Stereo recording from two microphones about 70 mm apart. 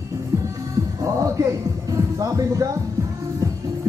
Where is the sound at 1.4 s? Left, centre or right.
Right.